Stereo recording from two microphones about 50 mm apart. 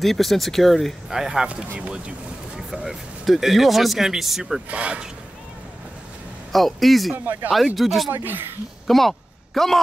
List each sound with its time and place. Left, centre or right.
0.0 s speech: centre
1.1 s speech: centre
4.6 s speech: right
6.5 s speech: centre
8.1 s speech: right
8.8 s a sound: centre